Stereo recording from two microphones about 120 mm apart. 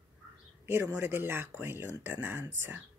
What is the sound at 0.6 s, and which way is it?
Speech, 20° right (ahead or behind).